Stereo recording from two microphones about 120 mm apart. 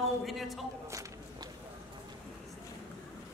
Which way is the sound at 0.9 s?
25° right (ahead or behind).